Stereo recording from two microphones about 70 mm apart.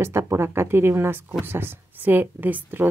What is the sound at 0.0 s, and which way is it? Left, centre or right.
Speech, right.